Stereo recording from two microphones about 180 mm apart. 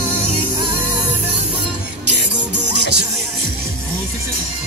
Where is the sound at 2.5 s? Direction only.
70° right (ahead or behind).